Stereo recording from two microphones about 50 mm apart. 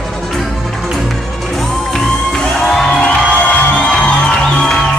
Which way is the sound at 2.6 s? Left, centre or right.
Centre.